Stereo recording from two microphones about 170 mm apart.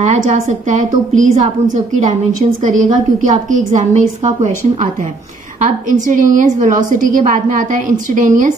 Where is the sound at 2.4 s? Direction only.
45° right (ahead or behind).